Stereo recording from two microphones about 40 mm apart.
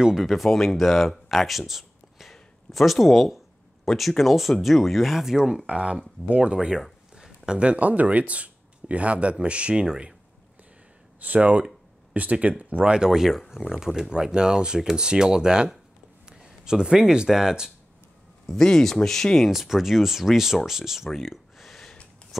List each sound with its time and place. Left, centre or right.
0.2 s speech: centre
7.2 s a sound: centre
7.5 s speech: right
11.1 s speech: right
12.9 s speech: centre
18.5 s speech: centre
19.5 s speech: centre
21.2 s a sound: centre
22.3 s shuffling cards: centre